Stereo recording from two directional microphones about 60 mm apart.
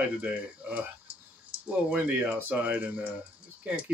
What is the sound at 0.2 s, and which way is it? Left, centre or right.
Speech, right.